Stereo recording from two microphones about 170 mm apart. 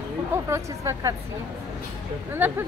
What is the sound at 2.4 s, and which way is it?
Speech, 10° right (ahead or behind).